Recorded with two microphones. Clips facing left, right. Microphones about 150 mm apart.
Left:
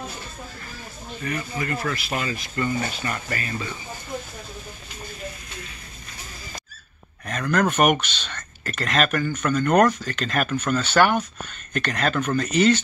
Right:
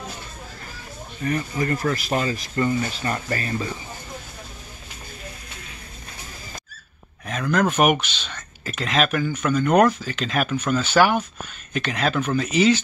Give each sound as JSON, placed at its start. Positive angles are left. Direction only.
{"t": 1.2, "sound": "speech", "side_deg": -35}
{"t": 7.2, "sound": "speech", "side_deg": 0}